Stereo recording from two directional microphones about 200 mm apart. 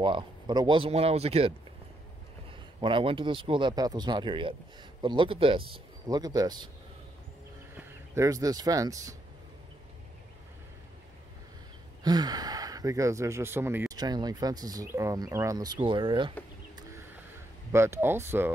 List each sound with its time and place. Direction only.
0.0 s speech: 25° right (ahead or behind)
2.8 s speech: 25° right (ahead or behind)
7.7 s speech: 15° right (ahead or behind)
12.0 s speech: 20° right (ahead or behind)
16.7 s a sound: 15° right (ahead or behind)
17.6 s speech: 15° right (ahead or behind)